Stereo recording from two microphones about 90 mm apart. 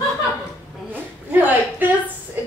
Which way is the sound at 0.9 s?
20° right (ahead or behind).